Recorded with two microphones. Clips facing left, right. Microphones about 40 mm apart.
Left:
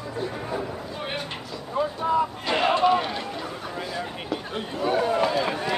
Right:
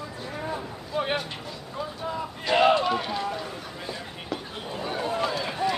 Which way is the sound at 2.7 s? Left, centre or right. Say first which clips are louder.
Left 3 dB; left.